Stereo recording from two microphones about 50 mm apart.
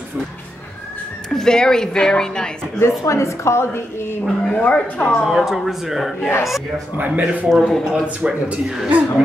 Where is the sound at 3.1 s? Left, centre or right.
Left.